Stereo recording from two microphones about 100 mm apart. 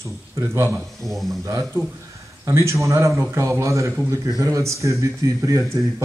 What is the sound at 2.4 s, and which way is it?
A man's voice, 30° right (ahead or behind).